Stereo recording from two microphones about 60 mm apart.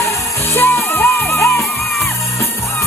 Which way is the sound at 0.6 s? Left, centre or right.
Left.